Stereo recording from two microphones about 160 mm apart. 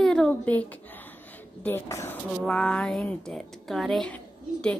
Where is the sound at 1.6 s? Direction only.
15° left (ahead or behind).